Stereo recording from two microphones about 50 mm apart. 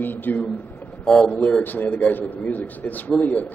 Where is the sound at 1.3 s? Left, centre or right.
Left.